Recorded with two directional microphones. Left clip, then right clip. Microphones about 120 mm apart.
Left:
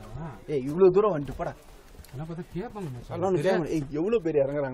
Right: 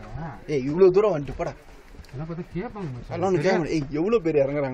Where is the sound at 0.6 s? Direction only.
5° left (ahead or behind).